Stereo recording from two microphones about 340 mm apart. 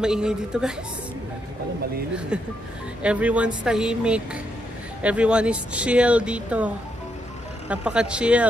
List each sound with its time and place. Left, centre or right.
0.0 s speech: centre
2.1 s speech: centre